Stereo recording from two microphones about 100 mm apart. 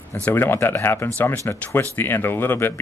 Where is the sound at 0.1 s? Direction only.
20° left (ahead or behind).